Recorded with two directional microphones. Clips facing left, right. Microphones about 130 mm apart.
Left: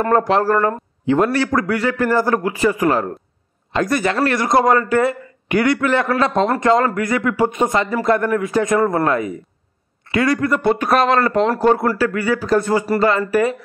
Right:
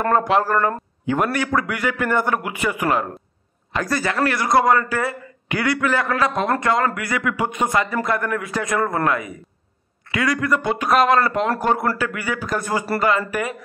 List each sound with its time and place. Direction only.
0.1 s a man's voice: 35° left (ahead or behind)
3.7 s a man's voice: 20° left (ahead or behind)